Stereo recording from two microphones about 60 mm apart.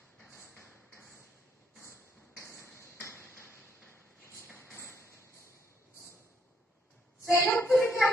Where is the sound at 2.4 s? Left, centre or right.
Left.